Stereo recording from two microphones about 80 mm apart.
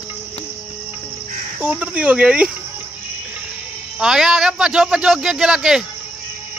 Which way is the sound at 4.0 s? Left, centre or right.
Centre.